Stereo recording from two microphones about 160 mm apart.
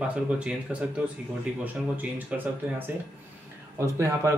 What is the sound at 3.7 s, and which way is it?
Speech, 20° right (ahead or behind).